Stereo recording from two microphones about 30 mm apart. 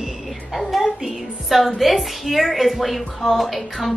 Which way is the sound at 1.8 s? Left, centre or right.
Centre.